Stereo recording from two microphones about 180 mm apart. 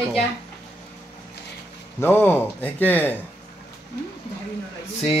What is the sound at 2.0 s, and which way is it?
Speech, 10° left (ahead or behind).